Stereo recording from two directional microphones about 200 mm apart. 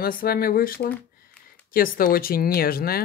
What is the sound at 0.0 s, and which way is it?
Speech, 50° left (ahead or behind).